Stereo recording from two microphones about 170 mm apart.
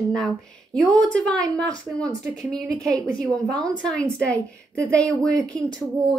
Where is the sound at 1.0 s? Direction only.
90° right.